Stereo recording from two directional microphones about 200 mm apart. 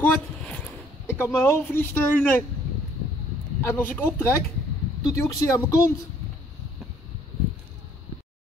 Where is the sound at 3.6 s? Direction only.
10° left (ahead or behind).